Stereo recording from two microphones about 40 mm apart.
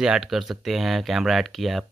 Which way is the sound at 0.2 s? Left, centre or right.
Centre.